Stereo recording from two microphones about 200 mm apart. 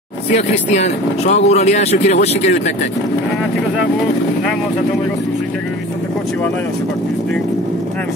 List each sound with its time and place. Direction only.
0.7 s speech: 35° left (ahead or behind)